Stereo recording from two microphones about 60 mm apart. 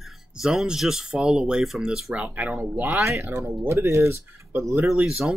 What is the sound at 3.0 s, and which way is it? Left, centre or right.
Speech, right.